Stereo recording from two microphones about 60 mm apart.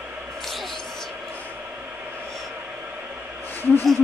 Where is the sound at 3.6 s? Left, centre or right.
Left.